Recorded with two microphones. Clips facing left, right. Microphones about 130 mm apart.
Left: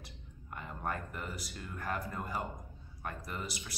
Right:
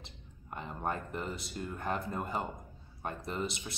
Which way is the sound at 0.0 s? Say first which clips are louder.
Left 1 dB; 25° right (ahead or behind).